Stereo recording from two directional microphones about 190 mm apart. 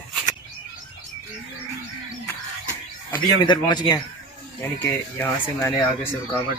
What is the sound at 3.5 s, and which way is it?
Speech, 25° left (ahead or behind).